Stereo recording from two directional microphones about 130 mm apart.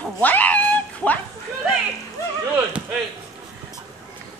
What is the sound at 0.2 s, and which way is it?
Cat, 15° left (ahead or behind).